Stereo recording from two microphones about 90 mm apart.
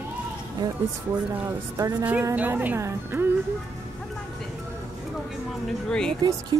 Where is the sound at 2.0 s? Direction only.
20° right (ahead or behind).